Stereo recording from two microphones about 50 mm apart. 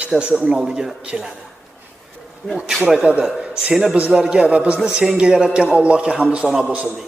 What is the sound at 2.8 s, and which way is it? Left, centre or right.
A man's voice, centre.